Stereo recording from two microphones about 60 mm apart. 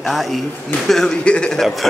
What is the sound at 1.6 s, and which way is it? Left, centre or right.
Speech, centre.